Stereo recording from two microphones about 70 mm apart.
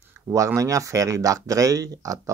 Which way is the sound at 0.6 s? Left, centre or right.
Right.